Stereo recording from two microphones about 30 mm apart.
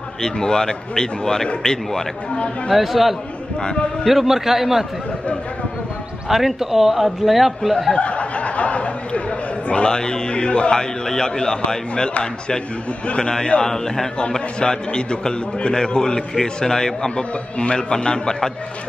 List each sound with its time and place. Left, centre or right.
0.2 s a man's voice: left
2.7 s a man's voice: centre
6.2 s a man's voice: centre
7.9 s a sound: left
9.7 s speech: left
9.9 s speech: left
10.7 s a man's voice: left
13.7 s a man's voice: centre
14.6 s a man's voice: left
17.1 s a man's voice: left